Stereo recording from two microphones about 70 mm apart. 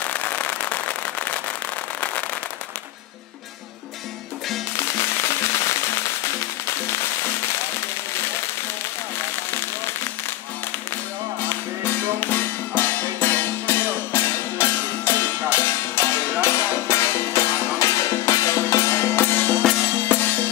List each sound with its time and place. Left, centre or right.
0.0 s a sound: left
4.7 s firecracker: left
6.2 s music: left
11.4 s music: left